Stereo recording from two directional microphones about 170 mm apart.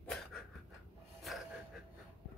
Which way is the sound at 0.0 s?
5° left (ahead or behind).